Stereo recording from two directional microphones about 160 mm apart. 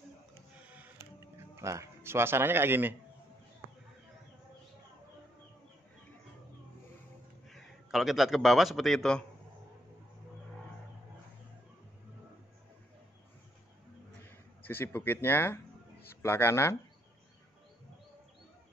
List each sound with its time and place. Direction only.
0.7 s music: 10° right (ahead or behind)
1.6 s a man's voice: 20° right (ahead or behind)
7.4 s a man's voice: centre (ahead or behind)
14.6 s speech: 10° left (ahead or behind)